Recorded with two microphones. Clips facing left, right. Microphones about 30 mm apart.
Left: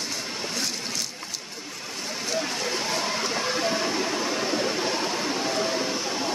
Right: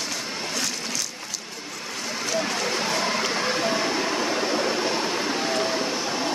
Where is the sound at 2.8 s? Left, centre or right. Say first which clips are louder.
Right 3 dB; right.